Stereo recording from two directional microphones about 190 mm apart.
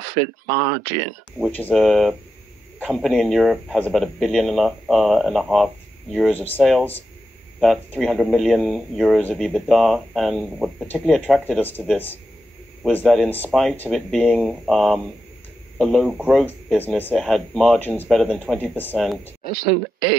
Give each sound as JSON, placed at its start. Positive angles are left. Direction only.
{"t": 1.6, "sound": "speech", "side_deg": 0}
{"t": 16.4, "sound": "speech", "side_deg": 10}
{"t": 18.6, "sound": "speech", "side_deg": 10}
{"t": 19.4, "sound": "speech", "side_deg": 50}